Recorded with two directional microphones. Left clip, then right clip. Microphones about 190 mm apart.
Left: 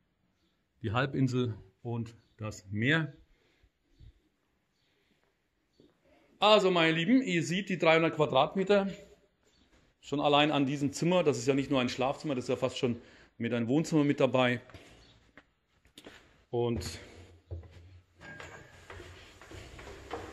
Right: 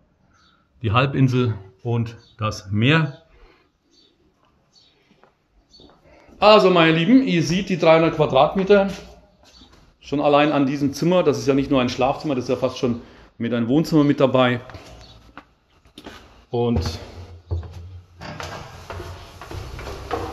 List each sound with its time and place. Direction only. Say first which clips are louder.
0.7 s speech: right 12 dB; 25° left (ahead or behind)
6.3 s a man's voice: right 11 dB; 30° left (ahead or behind); by 8.8 s 45° left (ahead or behind)
9.9 s a man's voice: right 10 dB; 40° left (ahead or behind)
15.9 s a sound: right 12 dB; 40° left (ahead or behind)